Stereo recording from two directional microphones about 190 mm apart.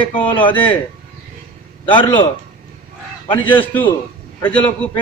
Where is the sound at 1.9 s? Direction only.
25° left (ahead or behind).